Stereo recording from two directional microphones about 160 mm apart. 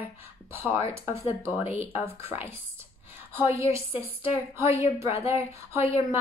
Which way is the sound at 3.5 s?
20° right (ahead or behind).